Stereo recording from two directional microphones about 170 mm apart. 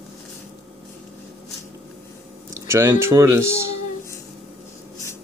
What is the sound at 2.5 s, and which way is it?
Speech, 15° right (ahead or behind).